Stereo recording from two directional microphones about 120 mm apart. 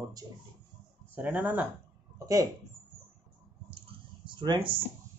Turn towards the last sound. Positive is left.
turn(degrees=-40)  # may be behind; listen again after turning